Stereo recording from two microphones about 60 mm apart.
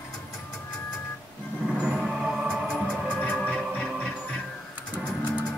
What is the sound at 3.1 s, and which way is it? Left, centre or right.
Music, centre.